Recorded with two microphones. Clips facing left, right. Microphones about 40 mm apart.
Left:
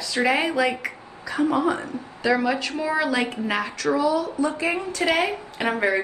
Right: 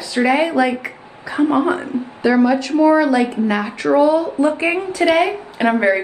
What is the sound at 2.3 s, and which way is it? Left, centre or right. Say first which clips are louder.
Speech: right 10 dB; centre.